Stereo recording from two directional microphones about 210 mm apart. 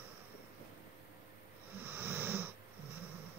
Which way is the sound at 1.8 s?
10° right (ahead or behind).